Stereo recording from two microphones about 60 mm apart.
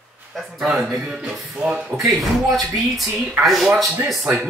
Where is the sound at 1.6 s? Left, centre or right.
Centre.